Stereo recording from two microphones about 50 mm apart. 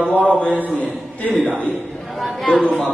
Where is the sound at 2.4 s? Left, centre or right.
Left.